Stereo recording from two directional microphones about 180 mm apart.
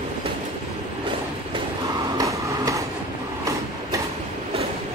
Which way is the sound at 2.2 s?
20° right (ahead or behind).